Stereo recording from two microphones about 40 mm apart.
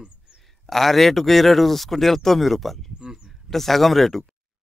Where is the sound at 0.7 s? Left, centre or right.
Centre.